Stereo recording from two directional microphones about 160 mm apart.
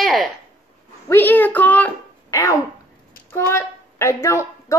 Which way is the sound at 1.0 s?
15° left (ahead or behind).